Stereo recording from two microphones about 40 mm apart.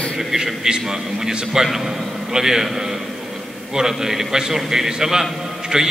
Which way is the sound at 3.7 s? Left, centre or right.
Centre.